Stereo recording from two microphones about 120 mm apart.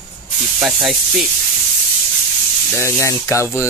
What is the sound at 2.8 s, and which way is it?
Speech, 25° left (ahead or behind).